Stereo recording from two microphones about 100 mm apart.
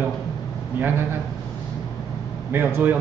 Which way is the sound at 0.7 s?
20° right (ahead or behind).